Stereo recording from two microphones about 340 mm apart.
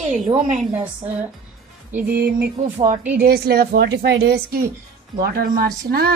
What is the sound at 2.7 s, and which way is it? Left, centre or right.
Speech, centre.